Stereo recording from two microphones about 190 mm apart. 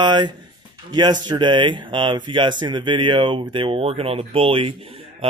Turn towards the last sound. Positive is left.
turn(degrees=-25)  # may be behind; listen again after turning